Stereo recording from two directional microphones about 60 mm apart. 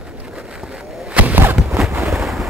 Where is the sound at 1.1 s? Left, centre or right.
Right.